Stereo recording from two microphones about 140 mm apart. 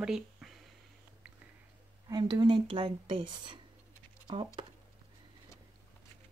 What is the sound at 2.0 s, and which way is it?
Speech, 30° right (ahead or behind).